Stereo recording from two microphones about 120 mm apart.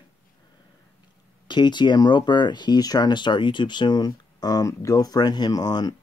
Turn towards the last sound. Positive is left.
turn(degrees=35)  # may be behind; listen again after turning